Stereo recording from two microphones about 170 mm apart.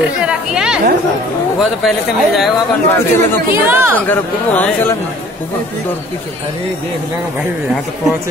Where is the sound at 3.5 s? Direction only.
15° right (ahead or behind).